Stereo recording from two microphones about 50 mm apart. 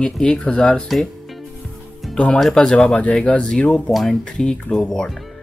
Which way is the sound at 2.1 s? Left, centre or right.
Left.